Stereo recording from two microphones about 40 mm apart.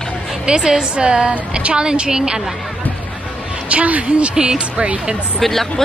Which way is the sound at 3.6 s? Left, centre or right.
Right.